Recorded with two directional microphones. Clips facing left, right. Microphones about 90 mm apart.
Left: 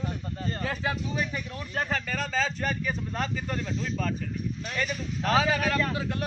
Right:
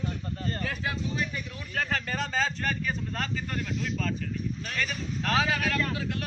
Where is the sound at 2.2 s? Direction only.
15° right (ahead or behind).